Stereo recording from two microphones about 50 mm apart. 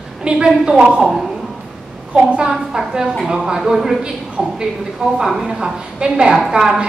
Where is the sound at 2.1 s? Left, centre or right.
Right.